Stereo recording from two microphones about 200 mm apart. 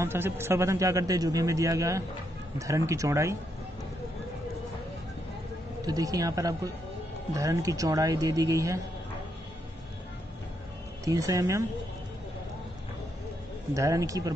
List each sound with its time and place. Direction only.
0.0 s speech: 10° right (ahead or behind)
5.8 s speech: 20° right (ahead or behind)
11.1 s speech: 15° right (ahead or behind)
13.7 s speech: 15° right (ahead or behind)